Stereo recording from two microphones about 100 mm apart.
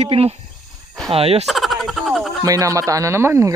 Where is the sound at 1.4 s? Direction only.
Centre (ahead or behind).